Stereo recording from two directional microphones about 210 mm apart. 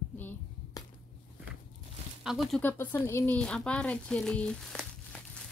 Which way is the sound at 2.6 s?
10° left (ahead or behind).